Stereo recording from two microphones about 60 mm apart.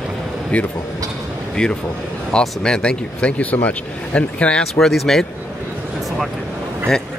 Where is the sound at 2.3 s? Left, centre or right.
Centre.